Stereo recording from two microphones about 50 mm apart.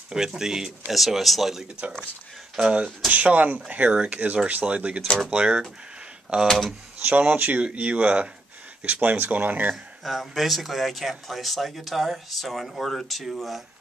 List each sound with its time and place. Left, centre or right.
0.1 s speech: centre
2.5 s speech: centre
3.1 s speech: right
6.4 s speech: centre
7.1 s speech: right
10.0 s speech: centre